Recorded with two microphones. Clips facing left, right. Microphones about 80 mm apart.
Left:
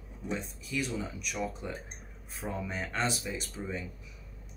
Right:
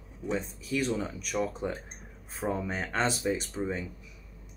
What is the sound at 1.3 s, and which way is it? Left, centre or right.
Speech, right.